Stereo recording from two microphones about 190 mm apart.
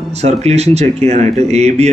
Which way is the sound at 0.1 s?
35° right (ahead or behind).